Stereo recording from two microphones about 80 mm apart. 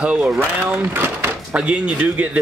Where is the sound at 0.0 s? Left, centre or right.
Centre.